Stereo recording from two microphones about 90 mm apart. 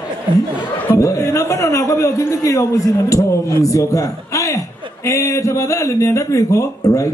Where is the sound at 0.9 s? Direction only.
35° left (ahead or behind).